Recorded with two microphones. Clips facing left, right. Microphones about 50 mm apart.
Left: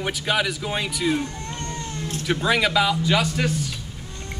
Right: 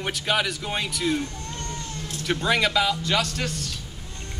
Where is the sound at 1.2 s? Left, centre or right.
Left.